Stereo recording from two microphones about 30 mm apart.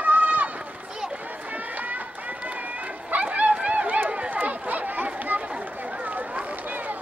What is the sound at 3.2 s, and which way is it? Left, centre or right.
Run, right.